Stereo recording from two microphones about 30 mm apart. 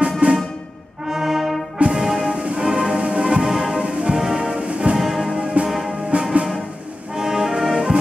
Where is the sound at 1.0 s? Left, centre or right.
Centre.